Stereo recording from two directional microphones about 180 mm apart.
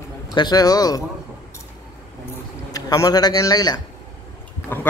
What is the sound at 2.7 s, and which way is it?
Speech, 20° left (ahead or behind).